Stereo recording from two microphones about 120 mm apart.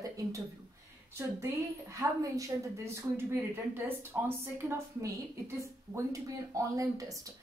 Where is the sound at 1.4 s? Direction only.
25° right (ahead or behind).